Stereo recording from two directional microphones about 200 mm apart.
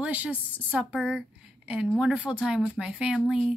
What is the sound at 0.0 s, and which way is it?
A woman's voice, 5° right (ahead or behind).